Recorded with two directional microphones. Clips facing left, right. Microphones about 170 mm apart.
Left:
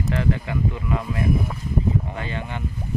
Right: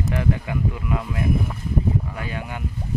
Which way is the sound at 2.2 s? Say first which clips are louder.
Left 1 dB; 10° right (ahead or behind).